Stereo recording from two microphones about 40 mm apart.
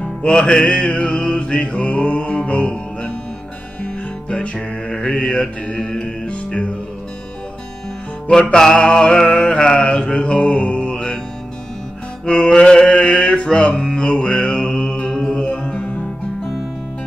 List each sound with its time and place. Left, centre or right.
0.0 s music: left
4.3 s music: left
8.5 s mantra: centre
12.3 s mantra: left
15.4 s music: left